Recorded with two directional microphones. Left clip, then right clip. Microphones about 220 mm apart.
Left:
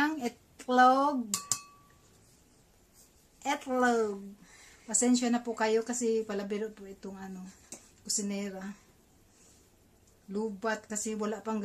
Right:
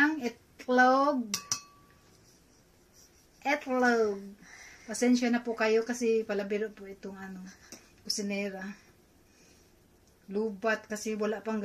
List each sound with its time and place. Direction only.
0.0 s dishes: 20° left (ahead or behind)
3.4 s speech: 10° left (ahead or behind)
10.3 s speech: 15° left (ahead or behind)